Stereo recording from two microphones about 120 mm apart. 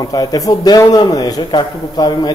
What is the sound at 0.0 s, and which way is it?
A man's voice, 30° left (ahead or behind).